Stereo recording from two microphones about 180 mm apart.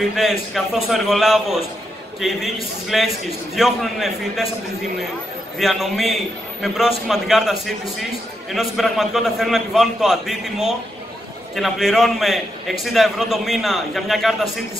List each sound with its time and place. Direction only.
0.1 s a man's voice: centre (ahead or behind)
5.6 s a man's voice: centre (ahead or behind)